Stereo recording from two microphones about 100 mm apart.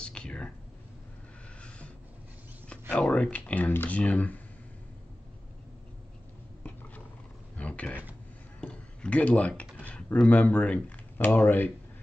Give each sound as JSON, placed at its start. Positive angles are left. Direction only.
{"t": 0.0, "sound": "whispering", "side_deg": 10}
{"t": 2.9, "sound": "speech", "side_deg": 10}
{"t": 7.5, "sound": "a sound", "side_deg": 15}
{"t": 9.8, "sound": "speech", "side_deg": 15}